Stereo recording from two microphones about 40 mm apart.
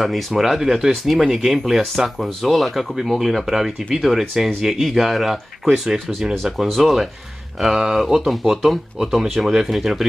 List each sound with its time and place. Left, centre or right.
0.0 s speech: centre
5.9 s speech: centre
6.8 s speech: centre